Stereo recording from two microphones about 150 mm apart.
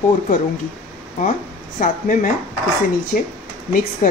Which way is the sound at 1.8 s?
60° left (ahead or behind).